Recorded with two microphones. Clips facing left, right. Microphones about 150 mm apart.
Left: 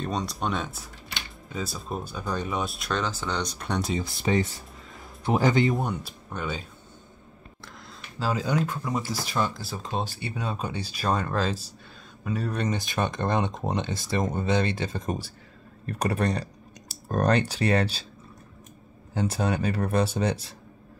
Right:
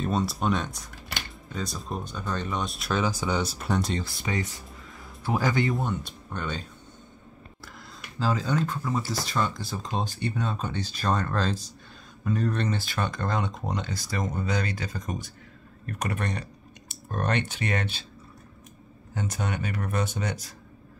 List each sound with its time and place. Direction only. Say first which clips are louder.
0.0 s speech: right 2 dB; 5° right (ahead or behind)
4.0 s speech: left 6 dB; 25° left (ahead or behind)
5.9 s speech: even; 5° left (ahead or behind)
8.2 s speech: even; 5° left (ahead or behind); by 18.0 s 35° left (ahead or behind)
19.1 s speech: left 5 dB; 30° left (ahead or behind)